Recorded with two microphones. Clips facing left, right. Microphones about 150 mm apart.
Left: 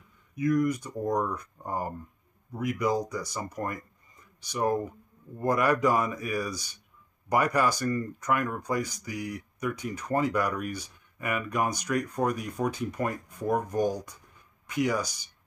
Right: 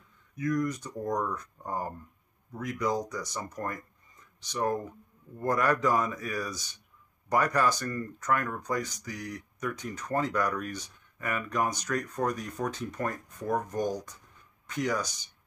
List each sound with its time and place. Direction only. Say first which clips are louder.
0.4 s speech: left 4 dB; 10° left (ahead or behind)